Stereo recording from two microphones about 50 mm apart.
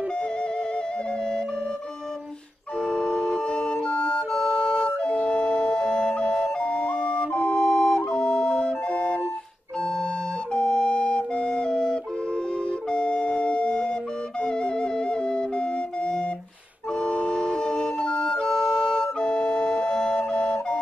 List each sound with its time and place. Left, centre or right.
2.8 s organ: centre
3.4 s music: left
4.3 s flute: centre
4.8 s music: left
10.5 s flute: centre
14.4 s music: centre
17.0 s music: left
17.4 s flute: centre
18.5 s flute: centre